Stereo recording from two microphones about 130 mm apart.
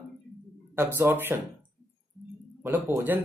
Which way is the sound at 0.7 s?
15° right (ahead or behind).